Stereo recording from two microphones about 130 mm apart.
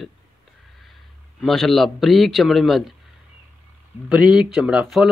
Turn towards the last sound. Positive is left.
turn(degrees=0)  # may be behind; listen again after turning